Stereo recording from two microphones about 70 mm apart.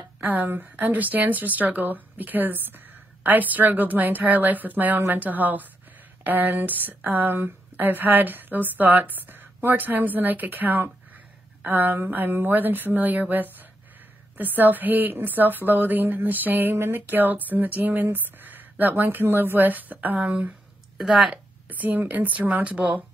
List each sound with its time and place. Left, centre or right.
0.2 s a woman's voice: right
21.0 s speech: centre
21.6 s a woman's voice: right